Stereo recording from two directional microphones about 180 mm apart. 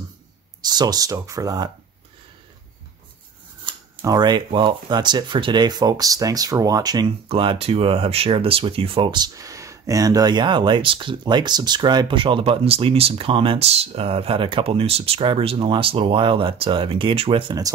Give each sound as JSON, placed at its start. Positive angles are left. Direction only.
{"t": 0.6, "sound": "speech", "side_deg": -20}
{"t": 3.6, "sound": "speech", "side_deg": -20}